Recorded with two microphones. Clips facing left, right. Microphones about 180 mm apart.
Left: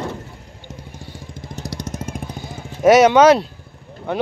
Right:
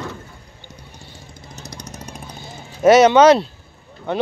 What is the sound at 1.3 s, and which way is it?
Vehicle, 90° left.